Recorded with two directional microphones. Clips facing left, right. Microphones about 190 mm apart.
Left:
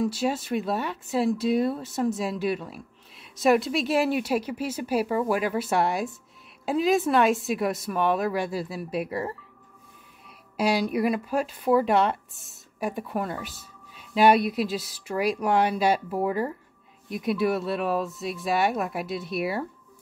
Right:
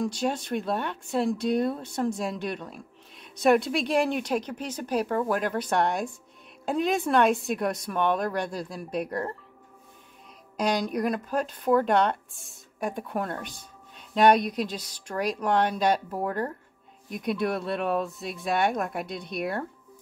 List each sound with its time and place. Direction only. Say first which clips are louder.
0.0 s speech: left 2 dB; 5° left (ahead or behind)
10.6 s speech: left 2 dB; 5° left (ahead or behind)